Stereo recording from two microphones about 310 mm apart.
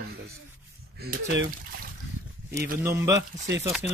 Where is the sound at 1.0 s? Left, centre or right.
Right.